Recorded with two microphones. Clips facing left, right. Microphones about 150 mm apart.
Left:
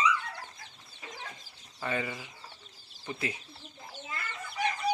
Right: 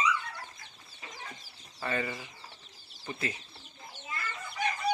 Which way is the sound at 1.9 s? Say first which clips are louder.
Even; 10° left (ahead or behind).